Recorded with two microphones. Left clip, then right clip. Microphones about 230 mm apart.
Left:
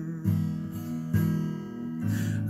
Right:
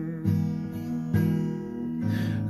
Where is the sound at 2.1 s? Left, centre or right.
Centre.